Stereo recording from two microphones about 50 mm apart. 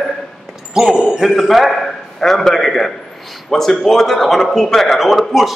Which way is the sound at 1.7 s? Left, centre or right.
Centre.